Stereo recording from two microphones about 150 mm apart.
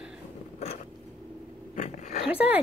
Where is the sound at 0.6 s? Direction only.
45° left (ahead or behind).